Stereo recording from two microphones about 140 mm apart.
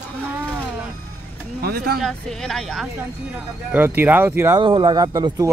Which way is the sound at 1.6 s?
90° right.